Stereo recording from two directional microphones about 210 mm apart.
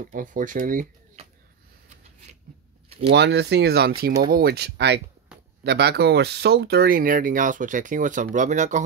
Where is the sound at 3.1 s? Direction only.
55° right (ahead or behind).